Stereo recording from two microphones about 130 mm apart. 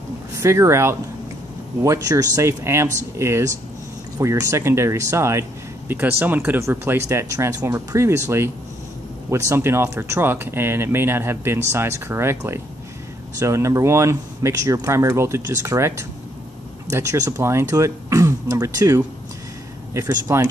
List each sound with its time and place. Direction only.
0.4 s speech: 20° right (ahead or behind)